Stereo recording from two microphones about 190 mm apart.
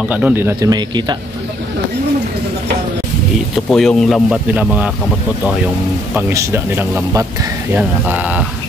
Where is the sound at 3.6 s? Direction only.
Centre (ahead or behind).